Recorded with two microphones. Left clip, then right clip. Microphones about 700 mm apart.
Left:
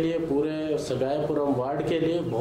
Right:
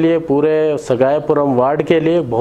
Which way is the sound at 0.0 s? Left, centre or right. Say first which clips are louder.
Right 12 dB; right.